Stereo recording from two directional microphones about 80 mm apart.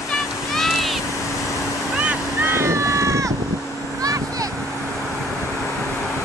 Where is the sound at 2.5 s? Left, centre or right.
Right.